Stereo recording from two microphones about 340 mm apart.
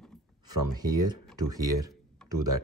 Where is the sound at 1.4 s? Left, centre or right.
Centre.